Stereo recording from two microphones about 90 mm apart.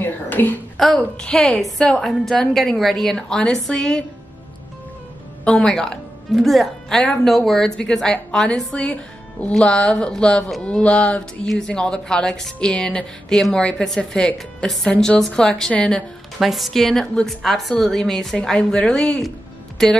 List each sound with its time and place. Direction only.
0.0 s speech: 20° left (ahead or behind)
0.7 s a woman's voice: 5° left (ahead or behind)
5.4 s speech: 10° left (ahead or behind)
16.3 s a woman's voice: centre (ahead or behind)